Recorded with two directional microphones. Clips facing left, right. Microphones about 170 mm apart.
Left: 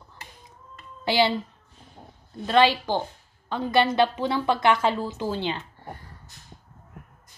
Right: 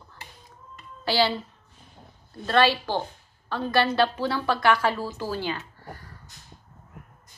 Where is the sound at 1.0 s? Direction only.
20° left (ahead or behind).